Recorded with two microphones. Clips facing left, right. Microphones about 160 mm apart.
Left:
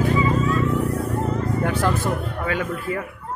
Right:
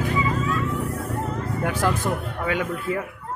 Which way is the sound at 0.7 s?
10° left (ahead or behind).